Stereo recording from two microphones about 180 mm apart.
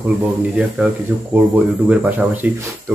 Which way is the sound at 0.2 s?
5° right (ahead or behind).